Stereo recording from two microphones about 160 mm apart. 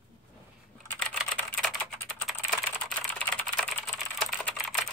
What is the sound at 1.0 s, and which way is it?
Typing, 5° left (ahead or behind).